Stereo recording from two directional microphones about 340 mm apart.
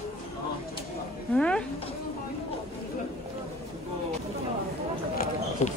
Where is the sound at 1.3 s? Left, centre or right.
Centre.